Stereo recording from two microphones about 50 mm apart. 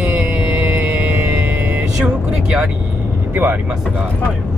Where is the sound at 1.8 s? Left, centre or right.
Centre.